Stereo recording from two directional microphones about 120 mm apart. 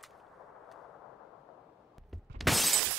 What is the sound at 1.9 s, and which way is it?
Shatter, centre (ahead or behind).